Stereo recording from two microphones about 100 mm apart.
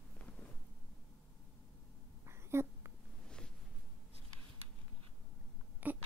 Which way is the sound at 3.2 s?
10° left (ahead or behind).